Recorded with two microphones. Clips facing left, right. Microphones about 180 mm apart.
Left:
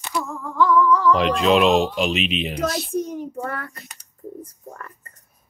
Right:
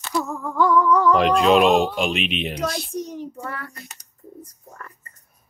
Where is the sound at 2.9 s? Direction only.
50° left (ahead or behind).